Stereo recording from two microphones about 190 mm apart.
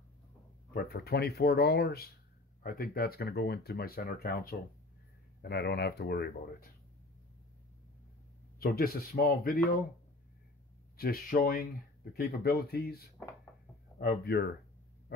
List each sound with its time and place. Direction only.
0.7 s speech: 55° left (ahead or behind)
8.5 s speech: 55° left (ahead or behind)
11.0 s speech: 50° left (ahead or behind)
15.1 s hum: 55° left (ahead or behind)